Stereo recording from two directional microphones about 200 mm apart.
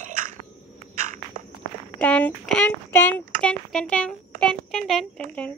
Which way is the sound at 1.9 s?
5° left (ahead or behind).